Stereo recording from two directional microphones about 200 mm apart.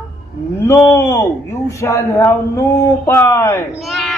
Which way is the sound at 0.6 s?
15° left (ahead or behind).